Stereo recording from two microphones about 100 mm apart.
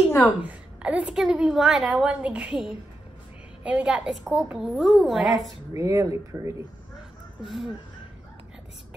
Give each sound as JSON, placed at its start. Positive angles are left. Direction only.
{"t": 0.4, "sound": "a woman's voice", "side_deg": -15}
{"t": 5.7, "sound": "speech", "side_deg": -30}
{"t": 7.4, "sound": "speech", "side_deg": 0}